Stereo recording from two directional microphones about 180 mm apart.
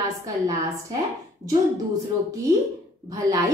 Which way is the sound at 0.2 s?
20° right (ahead or behind).